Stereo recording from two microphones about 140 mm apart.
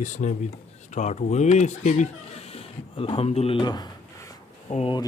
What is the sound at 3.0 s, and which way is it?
Speech, 45° left (ahead or behind).